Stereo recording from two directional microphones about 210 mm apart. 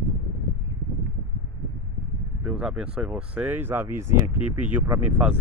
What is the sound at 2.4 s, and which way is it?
Speech, 5° right (ahead or behind).